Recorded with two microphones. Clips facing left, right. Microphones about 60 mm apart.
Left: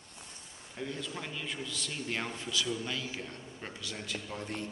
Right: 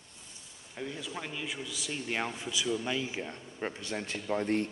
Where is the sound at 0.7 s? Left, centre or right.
Centre; by 4.6 s right.